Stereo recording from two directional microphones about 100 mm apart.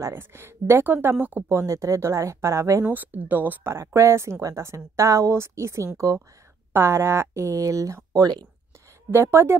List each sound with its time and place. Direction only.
0.0 s a woman's voice: 25° right (ahead or behind)
2.8 s a woman's voice: 20° right (ahead or behind); by 8.5 s 40° right (ahead or behind)
9.1 s a woman's voice: 25° right (ahead or behind)